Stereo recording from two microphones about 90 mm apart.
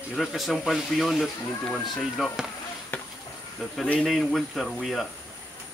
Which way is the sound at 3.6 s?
Centre (ahead or behind).